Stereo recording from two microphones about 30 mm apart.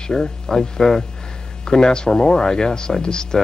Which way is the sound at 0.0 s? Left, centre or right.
Left.